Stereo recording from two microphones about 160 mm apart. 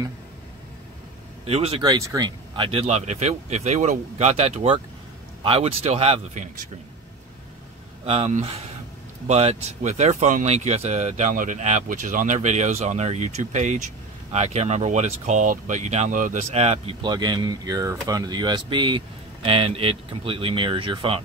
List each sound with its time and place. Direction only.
1.4 s speech: 40° right (ahead or behind)
1.9 s speech: 25° right (ahead or behind)
8.0 s speech: 40° right (ahead or behind)